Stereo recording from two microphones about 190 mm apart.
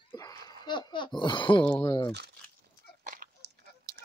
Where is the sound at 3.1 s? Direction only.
50° right (ahead or behind).